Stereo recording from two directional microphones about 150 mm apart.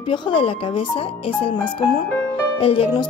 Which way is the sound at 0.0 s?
35° left (ahead or behind).